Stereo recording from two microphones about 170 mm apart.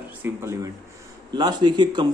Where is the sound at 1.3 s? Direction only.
25° right (ahead or behind).